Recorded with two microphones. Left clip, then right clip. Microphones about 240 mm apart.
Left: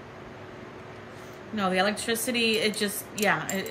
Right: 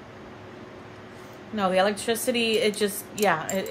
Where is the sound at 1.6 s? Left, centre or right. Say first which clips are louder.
Right 3 dB; centre.